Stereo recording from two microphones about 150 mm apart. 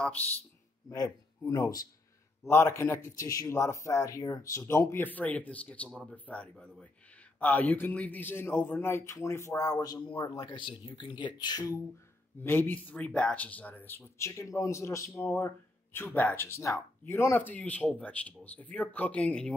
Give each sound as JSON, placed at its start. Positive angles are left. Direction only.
{"t": 0.8, "sound": "speech", "side_deg": 25}
{"t": 12.4, "sound": "speech", "side_deg": 15}